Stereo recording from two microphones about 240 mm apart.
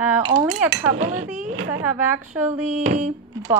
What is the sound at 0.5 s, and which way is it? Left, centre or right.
Speech, right.